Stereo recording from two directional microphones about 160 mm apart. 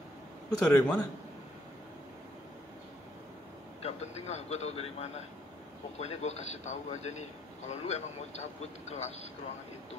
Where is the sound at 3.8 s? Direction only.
40° left (ahead or behind).